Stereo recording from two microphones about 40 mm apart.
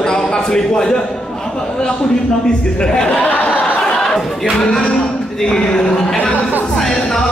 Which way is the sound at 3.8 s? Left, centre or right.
Centre.